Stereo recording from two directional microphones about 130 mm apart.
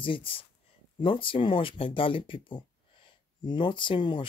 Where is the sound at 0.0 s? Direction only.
40° left (ahead or behind).